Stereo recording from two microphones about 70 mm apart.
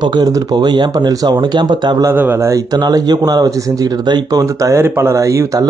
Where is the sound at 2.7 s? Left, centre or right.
Right.